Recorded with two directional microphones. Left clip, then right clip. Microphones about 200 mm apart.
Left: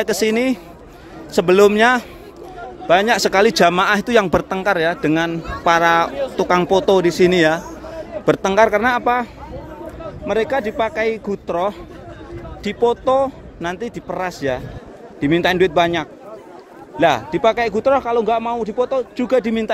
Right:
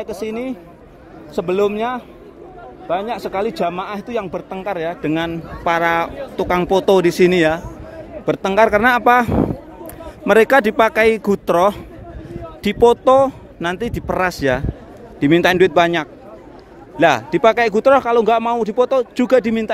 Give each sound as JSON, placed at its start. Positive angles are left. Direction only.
{"t": 0.0, "sound": "speech", "side_deg": 30}
{"t": 19.3, "sound": "speech", "side_deg": -10}